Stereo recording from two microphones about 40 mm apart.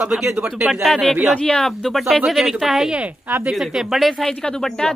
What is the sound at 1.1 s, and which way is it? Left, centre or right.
Speech, right.